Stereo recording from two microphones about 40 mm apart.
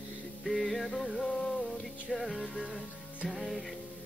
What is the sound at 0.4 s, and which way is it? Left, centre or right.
Music, centre.